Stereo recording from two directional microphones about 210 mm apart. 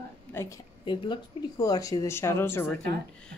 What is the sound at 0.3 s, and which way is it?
Speech, 10° left (ahead or behind).